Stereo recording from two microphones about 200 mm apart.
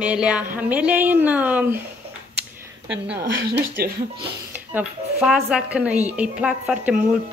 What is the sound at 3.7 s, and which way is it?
Speech, 55° right (ahead or behind).